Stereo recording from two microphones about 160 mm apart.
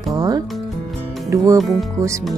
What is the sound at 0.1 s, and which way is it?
Music, 25° right (ahead or behind).